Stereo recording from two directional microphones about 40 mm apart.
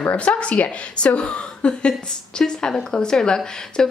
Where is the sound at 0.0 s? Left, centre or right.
Left.